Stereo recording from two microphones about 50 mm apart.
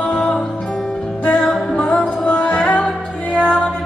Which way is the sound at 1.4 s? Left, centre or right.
Centre.